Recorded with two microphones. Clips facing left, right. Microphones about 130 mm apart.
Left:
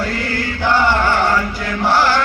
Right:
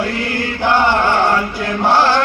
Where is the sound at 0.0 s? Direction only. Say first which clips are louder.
Right 2 dB; 20° right (ahead or behind).